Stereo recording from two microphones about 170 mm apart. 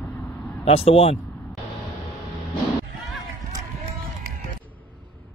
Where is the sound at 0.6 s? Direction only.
35° left (ahead or behind).